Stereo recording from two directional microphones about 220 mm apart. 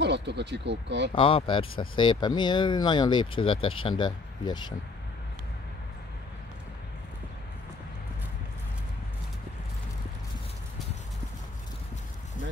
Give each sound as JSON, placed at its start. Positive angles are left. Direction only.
{"t": 0.0, "sound": "speech", "side_deg": -50}
{"t": 1.1, "sound": "speech", "side_deg": 25}